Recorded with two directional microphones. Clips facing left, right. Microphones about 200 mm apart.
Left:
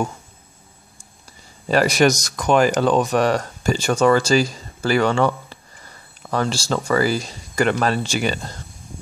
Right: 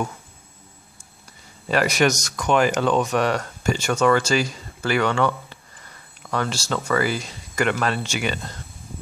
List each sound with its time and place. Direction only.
1.7 s speech: 35° left (ahead or behind)